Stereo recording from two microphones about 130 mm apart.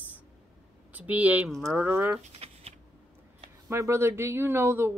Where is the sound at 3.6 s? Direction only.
20° right (ahead or behind).